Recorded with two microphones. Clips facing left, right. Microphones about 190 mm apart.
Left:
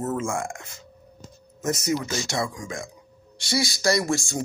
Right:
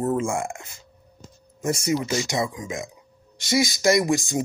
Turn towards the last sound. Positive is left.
turn(degrees=-15)  # may be behind; listen again after turning